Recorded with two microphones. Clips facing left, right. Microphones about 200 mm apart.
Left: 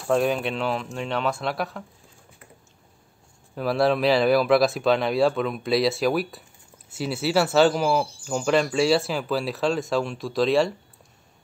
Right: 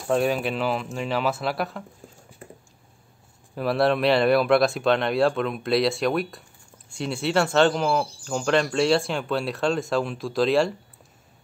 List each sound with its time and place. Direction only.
0.0 s speech: centre (ahead or behind)
2.4 s a sound: 30° right (ahead or behind)
3.5 s speech: centre (ahead or behind)